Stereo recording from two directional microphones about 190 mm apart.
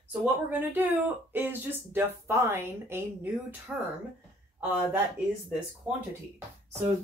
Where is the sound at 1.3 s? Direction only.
10° right (ahead or behind).